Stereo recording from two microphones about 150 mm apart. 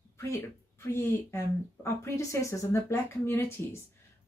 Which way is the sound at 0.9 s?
15° left (ahead or behind).